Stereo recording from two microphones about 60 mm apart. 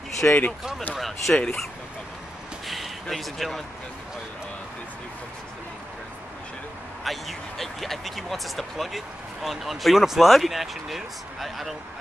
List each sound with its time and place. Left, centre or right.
0.2 s speech: left
0.9 s speech: centre
2.6 s a sound: centre
7.1 s speech: centre